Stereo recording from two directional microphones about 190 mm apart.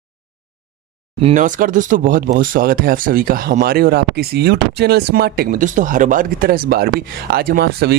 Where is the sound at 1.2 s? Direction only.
40° right (ahead or behind).